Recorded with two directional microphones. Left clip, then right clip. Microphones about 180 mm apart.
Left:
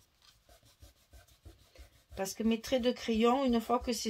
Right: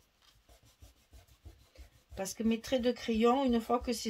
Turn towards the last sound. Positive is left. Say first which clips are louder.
# even
turn(degrees=35)  # may be behind; listen again after turning